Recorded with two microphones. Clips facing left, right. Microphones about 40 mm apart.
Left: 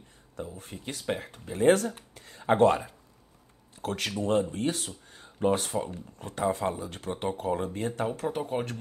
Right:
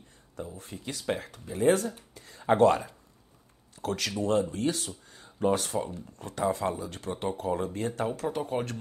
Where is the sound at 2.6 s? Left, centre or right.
Left.